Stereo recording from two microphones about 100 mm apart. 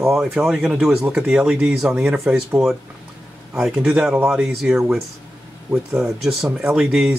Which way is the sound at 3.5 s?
10° right (ahead or behind).